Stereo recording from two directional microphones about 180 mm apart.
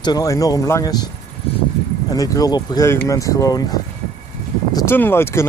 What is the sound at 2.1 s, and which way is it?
Speech, 20° left (ahead or behind).